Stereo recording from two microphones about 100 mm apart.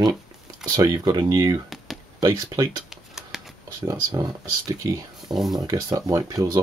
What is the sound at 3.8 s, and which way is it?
Speech, 40° right (ahead or behind).